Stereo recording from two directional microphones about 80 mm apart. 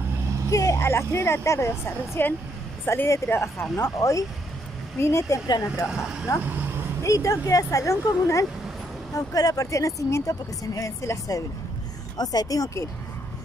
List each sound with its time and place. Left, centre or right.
0.5 s vehicle: left
0.7 s speech: left
6.4 s speech: right
7.0 s speech: left
9.1 s speech: left
12.2 s speech: left